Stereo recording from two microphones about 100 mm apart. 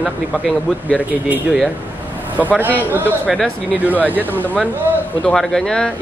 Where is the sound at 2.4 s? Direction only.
15° right (ahead or behind).